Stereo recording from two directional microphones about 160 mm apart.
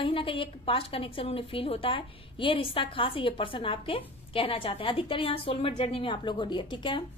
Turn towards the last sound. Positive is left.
turn(degrees=30)  # may be behind; listen again after turning